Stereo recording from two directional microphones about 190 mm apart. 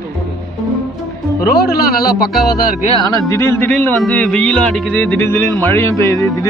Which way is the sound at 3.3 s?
15° left (ahead or behind).